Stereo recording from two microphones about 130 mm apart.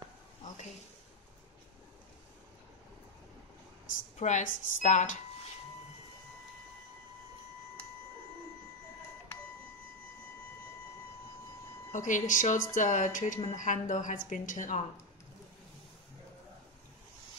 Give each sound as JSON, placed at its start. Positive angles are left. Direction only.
{"t": 4.2, "sound": "a woman's voice", "side_deg": 75}
{"t": 11.9, "sound": "a woman's voice", "side_deg": 80}
{"t": 13.6, "sound": "a woman's voice", "side_deg": 80}